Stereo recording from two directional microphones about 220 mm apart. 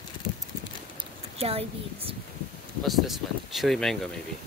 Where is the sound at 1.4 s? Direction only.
25° right (ahead or behind).